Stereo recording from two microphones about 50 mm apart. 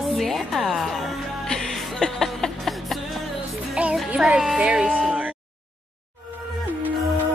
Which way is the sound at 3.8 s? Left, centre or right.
Right.